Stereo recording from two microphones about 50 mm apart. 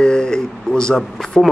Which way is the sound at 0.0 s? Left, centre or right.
Centre.